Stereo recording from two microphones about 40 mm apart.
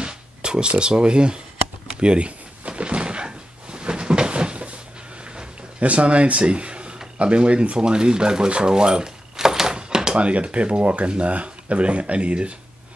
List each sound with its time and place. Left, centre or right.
0.0 s speech: right
2.0 s a sound: right
5.8 s speech: right; by 9.8 s centre
9.8 s door: centre
10.1 s speech: right